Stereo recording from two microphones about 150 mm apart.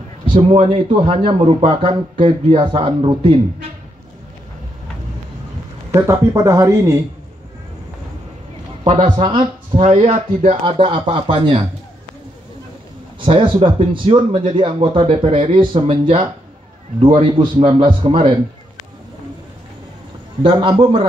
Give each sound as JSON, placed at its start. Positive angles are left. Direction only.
{"t": 0.3, "sound": "a man's voice", "side_deg": -35}
{"t": 5.9, "sound": "speech", "side_deg": -20}
{"t": 9.0, "sound": "speech", "side_deg": -30}
{"t": 13.2, "sound": "speech", "side_deg": -35}
{"t": 20.4, "sound": "speech", "side_deg": -30}